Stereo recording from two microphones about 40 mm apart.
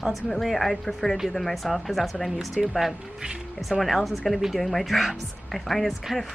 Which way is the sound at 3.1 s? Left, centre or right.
Centre.